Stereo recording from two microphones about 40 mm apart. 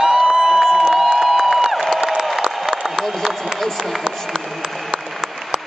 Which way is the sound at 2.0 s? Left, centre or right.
Centre.